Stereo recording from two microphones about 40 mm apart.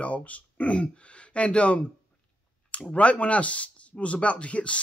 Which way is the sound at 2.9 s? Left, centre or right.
Left.